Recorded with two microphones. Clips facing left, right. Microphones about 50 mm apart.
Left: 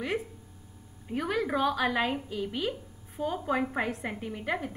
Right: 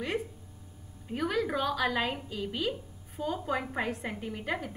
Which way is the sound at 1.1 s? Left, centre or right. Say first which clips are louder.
Left 1 dB; centre.